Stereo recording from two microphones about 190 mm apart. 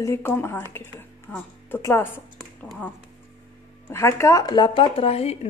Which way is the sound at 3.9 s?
15° left (ahead or behind).